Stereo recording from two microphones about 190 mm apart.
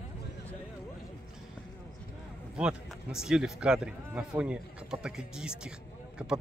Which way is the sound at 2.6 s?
5° right (ahead or behind).